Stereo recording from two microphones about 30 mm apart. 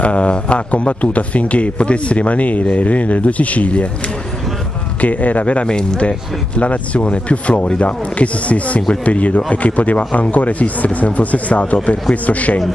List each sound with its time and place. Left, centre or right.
0.0 s speech: left
5.0 s speech: left
5.7 s speech: left
6.0 s speech: left